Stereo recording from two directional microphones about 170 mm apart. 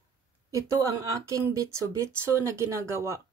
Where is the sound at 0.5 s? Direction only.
20° right (ahead or behind).